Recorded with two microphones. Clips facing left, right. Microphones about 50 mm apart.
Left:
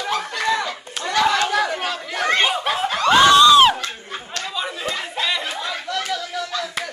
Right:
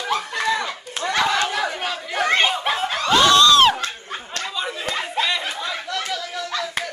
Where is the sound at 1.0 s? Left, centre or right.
Centre.